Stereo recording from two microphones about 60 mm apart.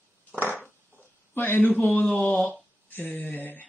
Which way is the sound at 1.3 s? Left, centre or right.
Left.